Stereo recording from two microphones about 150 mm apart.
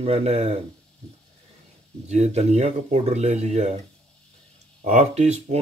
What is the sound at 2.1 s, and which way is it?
Speech, 45° right (ahead or behind).